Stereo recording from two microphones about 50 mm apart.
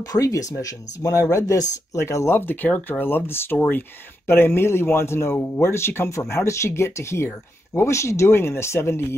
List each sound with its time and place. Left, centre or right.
0.2 s speech: left
2.2 s speech: left
6.1 s speech: left
8.3 s speech: left